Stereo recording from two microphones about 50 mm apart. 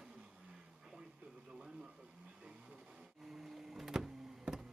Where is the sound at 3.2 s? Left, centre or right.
Centre.